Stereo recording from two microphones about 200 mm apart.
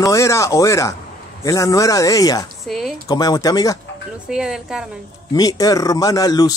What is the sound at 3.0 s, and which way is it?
Speech, 20° left (ahead or behind).